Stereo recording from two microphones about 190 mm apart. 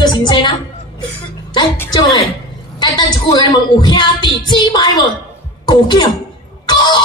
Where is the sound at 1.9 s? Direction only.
25° left (ahead or behind).